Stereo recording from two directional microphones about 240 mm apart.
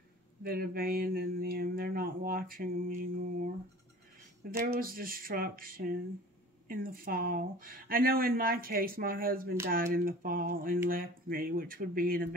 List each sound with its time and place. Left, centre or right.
0.4 s speech: right
4.5 s speech: right